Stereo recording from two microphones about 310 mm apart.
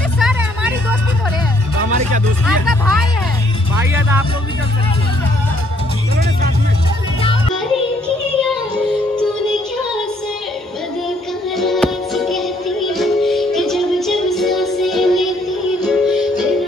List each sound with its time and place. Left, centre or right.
0.2 s vehicle: centre
1.8 s music: right
2.4 s music: centre
11.5 s music: centre